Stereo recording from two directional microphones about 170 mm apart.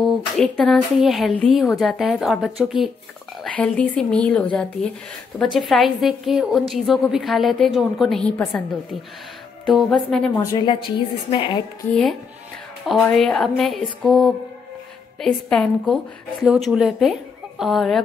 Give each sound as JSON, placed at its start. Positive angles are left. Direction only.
{"t": 0.0, "sound": "a woman's voice", "side_deg": 0}
{"t": 9.7, "sound": "a woman's voice", "side_deg": 0}
{"t": 10.3, "sound": "a woman's voice", "side_deg": 20}
{"t": 11.9, "sound": "a woman's voice", "side_deg": 0}